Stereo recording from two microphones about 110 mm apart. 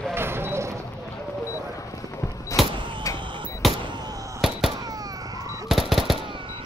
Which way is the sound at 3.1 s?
50° right (ahead or behind).